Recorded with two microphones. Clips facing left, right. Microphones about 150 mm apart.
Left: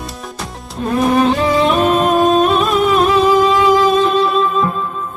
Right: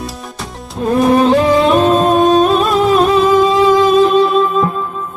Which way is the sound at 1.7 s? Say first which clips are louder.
Right 3 dB; 35° right (ahead or behind).